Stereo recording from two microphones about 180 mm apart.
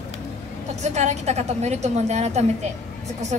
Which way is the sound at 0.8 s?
40° right (ahead or behind).